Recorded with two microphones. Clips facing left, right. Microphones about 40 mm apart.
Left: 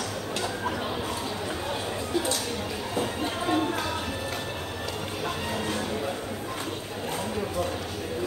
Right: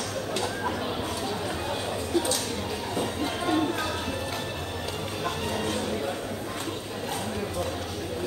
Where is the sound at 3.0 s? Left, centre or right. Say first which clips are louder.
Left 1 dB; centre.